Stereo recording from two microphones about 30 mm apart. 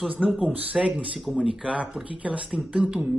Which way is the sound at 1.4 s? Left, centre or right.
Right.